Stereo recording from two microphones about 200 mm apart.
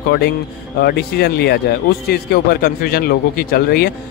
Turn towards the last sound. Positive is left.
turn(degrees=50)  # may be behind; listen again after turning